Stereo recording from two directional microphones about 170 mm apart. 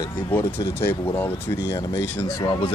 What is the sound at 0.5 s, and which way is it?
Speech, 70° left (ahead or behind).